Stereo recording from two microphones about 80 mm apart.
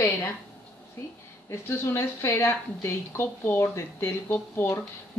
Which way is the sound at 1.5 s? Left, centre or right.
Left.